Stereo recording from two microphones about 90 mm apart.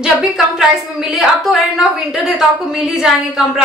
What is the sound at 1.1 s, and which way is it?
A woman's voice, centre (ahead or behind).